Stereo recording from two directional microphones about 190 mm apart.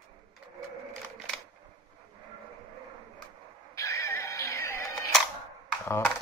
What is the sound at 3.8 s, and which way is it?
Music, 15° left (ahead or behind).